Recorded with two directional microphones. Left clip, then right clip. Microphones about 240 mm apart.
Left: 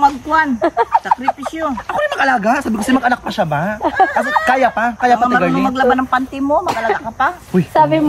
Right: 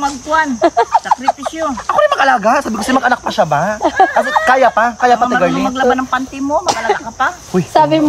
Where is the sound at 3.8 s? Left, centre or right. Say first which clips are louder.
Right 1 dB; right.